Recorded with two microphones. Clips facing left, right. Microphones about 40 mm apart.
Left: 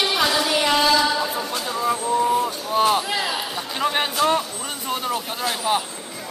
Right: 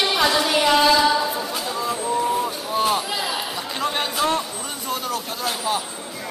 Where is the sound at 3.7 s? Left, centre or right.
Centre.